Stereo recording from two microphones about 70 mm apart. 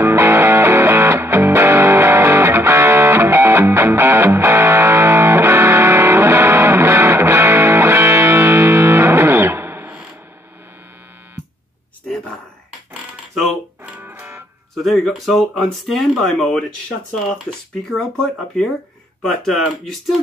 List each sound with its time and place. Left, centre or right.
0.0 s music: right
13.3 s music: centre
13.8 s music: right
14.8 s speech: centre